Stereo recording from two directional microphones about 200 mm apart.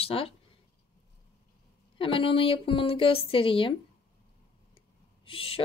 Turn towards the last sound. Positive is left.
turn(degrees=30)  # may be behind; listen again after turning